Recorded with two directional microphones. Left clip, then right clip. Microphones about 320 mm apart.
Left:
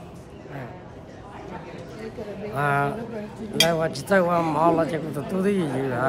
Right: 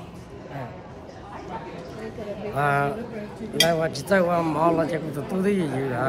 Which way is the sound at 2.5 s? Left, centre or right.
Centre.